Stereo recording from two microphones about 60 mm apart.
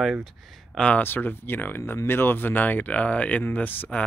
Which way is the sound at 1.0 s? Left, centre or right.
Left.